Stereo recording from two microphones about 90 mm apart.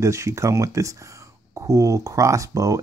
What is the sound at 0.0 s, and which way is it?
Speech, 35° right (ahead or behind).